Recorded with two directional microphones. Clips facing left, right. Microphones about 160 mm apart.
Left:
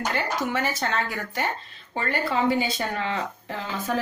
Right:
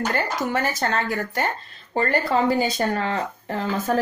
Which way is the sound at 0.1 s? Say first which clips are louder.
Right 3 dB; 45° right (ahead or behind).